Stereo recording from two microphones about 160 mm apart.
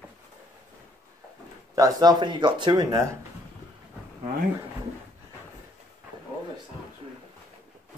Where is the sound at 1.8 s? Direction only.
20° right (ahead or behind).